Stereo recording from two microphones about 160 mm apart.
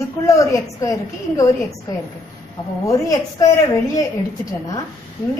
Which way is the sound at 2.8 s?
20° left (ahead or behind).